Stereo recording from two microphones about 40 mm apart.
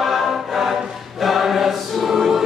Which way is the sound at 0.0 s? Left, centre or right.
Centre.